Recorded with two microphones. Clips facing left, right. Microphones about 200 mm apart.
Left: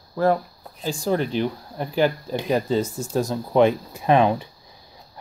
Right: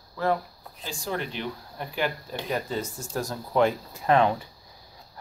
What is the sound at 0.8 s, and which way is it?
Speech, 35° left (ahead or behind).